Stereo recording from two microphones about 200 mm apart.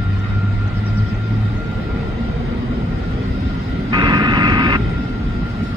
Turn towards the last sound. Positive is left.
turn(degrees=-20)  # may be behind; listen again after turning